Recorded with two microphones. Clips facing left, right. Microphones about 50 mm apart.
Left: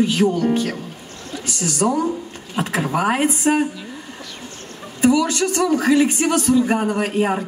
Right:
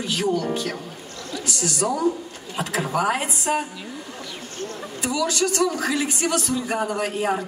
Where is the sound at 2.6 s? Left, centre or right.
Centre.